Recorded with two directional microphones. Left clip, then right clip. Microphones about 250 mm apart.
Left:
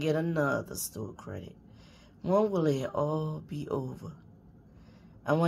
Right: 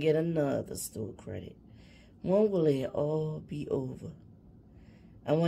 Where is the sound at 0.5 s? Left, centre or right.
Left.